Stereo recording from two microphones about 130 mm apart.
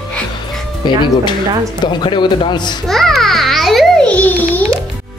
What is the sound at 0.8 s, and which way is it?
A man's voice, 35° left (ahead or behind).